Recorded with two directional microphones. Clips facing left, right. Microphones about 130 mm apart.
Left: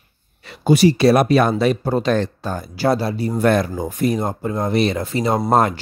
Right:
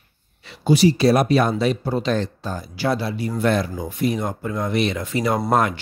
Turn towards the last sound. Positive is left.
turn(degrees=35)  # may be behind; listen again after turning